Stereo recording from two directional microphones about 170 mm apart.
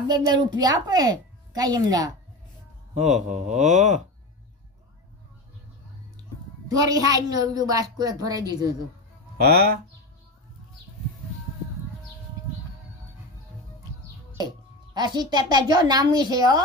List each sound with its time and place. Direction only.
0.1 s a woman's voice: 25° right (ahead or behind)
2.9 s speech: 45° right (ahead or behind)
6.7 s a woman's voice: 20° right (ahead or behind)
15.0 s a woman's voice: 25° right (ahead or behind)